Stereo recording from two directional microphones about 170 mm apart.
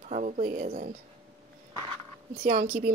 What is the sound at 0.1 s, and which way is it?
Speech, 45° right (ahead or behind).